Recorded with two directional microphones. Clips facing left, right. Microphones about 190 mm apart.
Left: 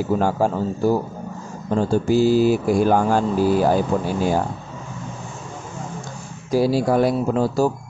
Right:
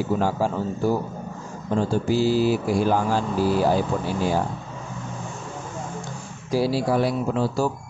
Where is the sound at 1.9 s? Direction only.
50° left (ahead or behind).